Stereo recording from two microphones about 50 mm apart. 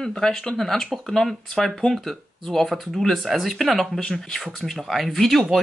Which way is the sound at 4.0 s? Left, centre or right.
Centre.